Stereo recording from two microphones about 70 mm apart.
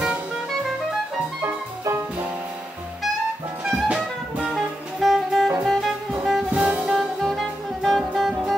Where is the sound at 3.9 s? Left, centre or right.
Centre.